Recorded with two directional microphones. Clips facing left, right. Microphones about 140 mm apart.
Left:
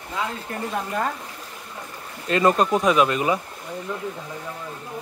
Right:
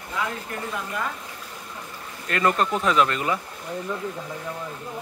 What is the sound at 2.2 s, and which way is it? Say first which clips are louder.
Speech: left 4 dB; 20° left (ahead or behind).